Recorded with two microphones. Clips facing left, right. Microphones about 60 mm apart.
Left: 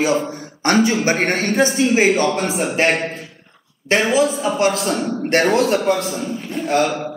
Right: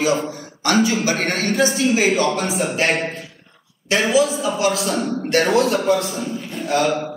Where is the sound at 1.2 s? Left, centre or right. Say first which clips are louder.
Left 2 dB; left.